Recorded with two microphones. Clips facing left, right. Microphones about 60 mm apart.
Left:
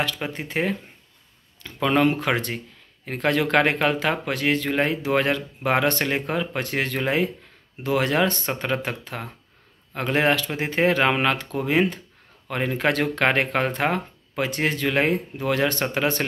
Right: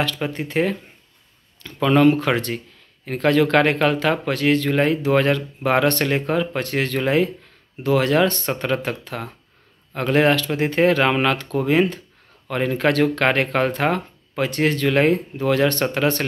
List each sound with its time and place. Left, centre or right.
0.0 s speech: left